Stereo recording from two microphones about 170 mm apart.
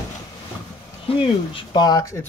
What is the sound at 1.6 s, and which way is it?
Speech, 25° left (ahead or behind).